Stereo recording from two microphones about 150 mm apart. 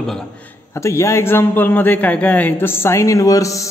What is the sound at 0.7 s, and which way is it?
A man's voice, 20° left (ahead or behind).